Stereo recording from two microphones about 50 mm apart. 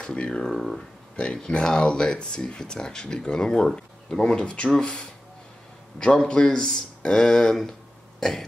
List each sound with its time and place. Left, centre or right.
0.0 s speech: centre
0.5 s speech: centre
1.1 s speech: centre
8.2 s throat clearing: centre